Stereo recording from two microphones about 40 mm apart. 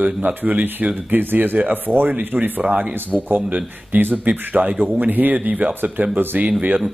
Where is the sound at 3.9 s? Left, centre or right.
Right.